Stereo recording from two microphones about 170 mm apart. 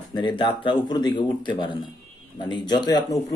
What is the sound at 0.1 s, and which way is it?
Speech, 25° left (ahead or behind).